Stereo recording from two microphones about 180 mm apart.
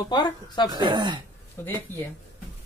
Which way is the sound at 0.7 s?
25° right (ahead or behind).